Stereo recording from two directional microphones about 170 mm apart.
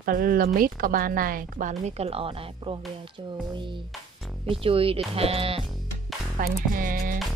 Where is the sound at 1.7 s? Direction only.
40° right (ahead or behind).